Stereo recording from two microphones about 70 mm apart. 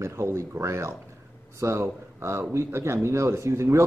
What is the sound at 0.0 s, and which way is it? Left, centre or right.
Speech, right.